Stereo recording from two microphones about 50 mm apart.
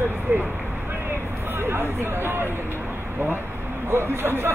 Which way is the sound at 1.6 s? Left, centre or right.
Right.